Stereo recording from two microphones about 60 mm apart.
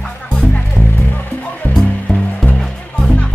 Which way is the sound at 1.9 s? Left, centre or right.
Centre.